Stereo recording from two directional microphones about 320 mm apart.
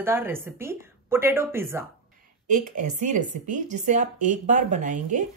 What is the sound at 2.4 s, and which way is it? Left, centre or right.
A woman's voice, right.